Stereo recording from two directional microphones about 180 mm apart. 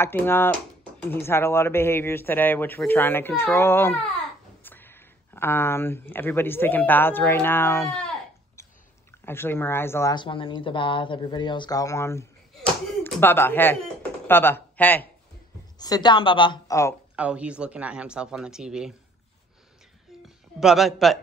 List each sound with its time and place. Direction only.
0.0 s speech: 10° left (ahead or behind)
8.6 s chewing: 15° left (ahead or behind)
9.2 s speech: 10° left (ahead or behind)
10.1 s speech: 30° left (ahead or behind); by 15.0 s 10° left (ahead or behind)
15.8 s speech: 25° left (ahead or behind)
17.1 s speech: 5° right (ahead or behind)
20.2 s speech: centre (ahead or behind)